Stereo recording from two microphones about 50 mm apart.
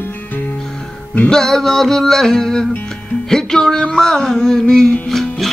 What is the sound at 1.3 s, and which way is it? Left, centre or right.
Music, centre.